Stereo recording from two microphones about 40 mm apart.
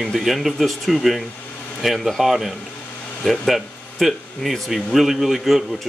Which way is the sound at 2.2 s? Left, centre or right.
Centre.